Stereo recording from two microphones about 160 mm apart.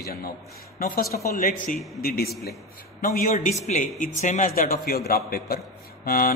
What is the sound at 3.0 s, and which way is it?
A man's voice, 60° left (ahead or behind).